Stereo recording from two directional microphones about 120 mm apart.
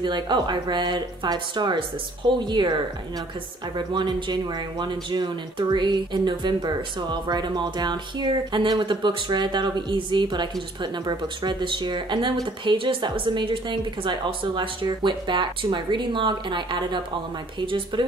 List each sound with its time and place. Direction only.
0.0 s speech: 40° right (ahead or behind)